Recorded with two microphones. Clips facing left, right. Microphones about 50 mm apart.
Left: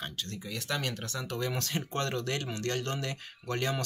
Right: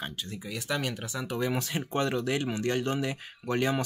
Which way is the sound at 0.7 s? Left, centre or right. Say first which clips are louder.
Right 3 dB; centre.